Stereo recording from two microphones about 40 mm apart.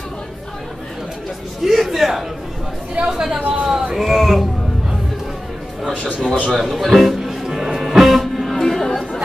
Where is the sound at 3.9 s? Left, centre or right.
Centre.